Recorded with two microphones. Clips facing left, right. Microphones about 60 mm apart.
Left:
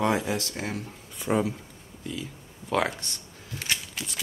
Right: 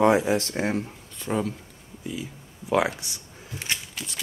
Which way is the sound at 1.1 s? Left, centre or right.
Centre.